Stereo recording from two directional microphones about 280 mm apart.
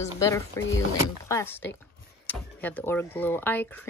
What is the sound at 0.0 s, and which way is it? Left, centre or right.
Female singing, centre.